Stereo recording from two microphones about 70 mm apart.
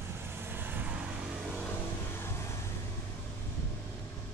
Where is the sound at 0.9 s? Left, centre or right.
Centre.